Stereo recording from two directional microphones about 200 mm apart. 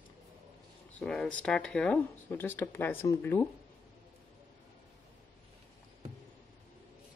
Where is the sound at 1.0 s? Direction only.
5° left (ahead or behind).